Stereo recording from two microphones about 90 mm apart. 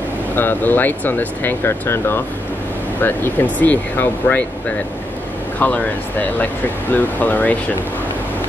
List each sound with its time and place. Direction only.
0.4 s speech: 20° left (ahead or behind)